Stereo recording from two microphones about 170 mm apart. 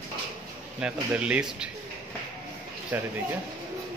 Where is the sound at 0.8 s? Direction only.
5° right (ahead or behind).